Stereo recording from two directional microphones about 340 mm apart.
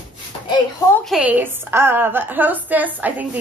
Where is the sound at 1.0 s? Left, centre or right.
Centre.